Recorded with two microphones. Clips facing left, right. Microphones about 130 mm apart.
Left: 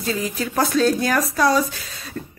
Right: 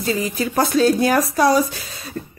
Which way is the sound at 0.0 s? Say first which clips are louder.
Right 3 dB; 5° right (ahead or behind).